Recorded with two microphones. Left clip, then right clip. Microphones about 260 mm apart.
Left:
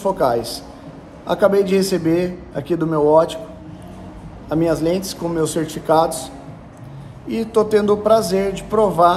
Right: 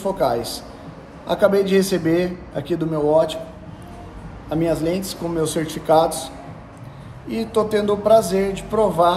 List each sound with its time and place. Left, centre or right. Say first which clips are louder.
0.0 s a man's voice: left 3 dB; centre
4.5 s a man's voice: left 3 dB; centre